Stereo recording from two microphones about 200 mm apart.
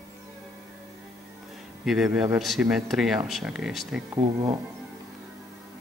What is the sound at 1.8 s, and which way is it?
Speech, 5° right (ahead or behind).